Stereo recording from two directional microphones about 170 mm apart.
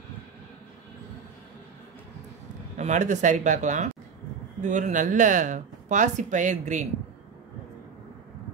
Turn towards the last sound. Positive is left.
turn(degrees=-45)  # may be behind; listen again after turning